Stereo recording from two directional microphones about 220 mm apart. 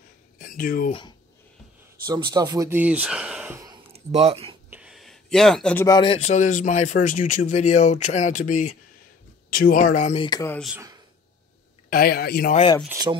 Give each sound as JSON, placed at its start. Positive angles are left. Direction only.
{"t": 0.4, "sound": "speech", "side_deg": 40}
{"t": 2.0, "sound": "speech", "side_deg": -20}
{"t": 3.9, "sound": "speech", "side_deg": -30}
{"t": 4.6, "sound": "a sound", "side_deg": -5}
{"t": 5.9, "sound": "a man's voice", "side_deg": 20}
{"t": 10.2, "sound": "speech", "side_deg": 15}
{"t": 11.9, "sound": "speech", "side_deg": 45}
{"t": 12.5, "sound": "speech", "side_deg": 20}
{"t": 12.8, "sound": "speech", "side_deg": -15}